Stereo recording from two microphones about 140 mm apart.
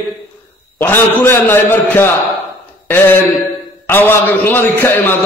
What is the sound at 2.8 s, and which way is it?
A man's voice, 15° left (ahead or behind).